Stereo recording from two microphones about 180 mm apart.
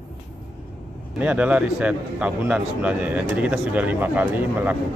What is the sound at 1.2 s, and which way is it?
A man's voice, 5° right (ahead or behind).